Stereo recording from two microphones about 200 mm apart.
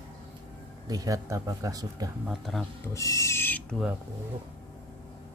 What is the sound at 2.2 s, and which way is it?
Speech, centre (ahead or behind).